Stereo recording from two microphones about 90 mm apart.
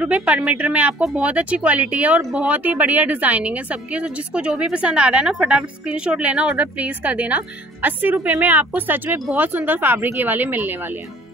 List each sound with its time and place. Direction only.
0.0 s speech: 15° right (ahead or behind)